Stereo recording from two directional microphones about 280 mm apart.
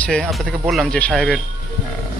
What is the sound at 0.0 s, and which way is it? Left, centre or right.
Speech, centre.